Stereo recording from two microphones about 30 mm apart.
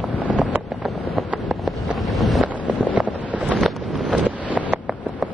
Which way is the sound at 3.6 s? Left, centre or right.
Centre.